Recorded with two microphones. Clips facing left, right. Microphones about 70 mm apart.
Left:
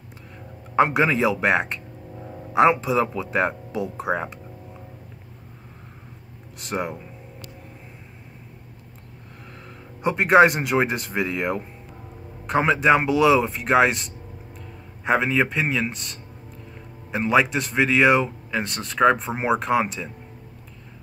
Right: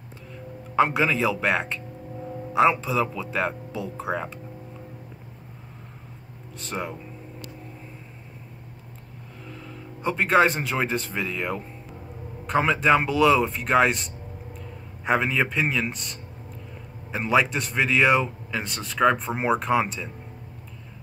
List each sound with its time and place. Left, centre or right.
0.7 s speech: centre
6.6 s speech: centre
10.0 s speech: centre
15.0 s a man's voice: centre